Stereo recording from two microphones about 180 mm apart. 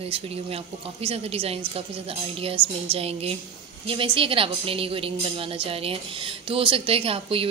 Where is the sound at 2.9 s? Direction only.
35° right (ahead or behind).